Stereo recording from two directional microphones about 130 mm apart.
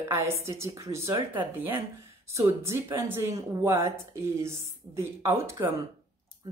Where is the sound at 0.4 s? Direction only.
20° right (ahead or behind).